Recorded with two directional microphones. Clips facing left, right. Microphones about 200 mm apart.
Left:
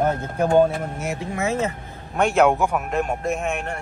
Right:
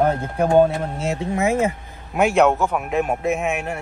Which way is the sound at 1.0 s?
20° right (ahead or behind).